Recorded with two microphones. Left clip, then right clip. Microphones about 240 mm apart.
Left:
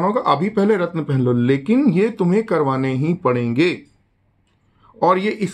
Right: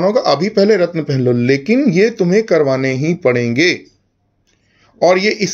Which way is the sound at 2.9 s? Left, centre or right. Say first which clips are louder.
Right 5 dB; right.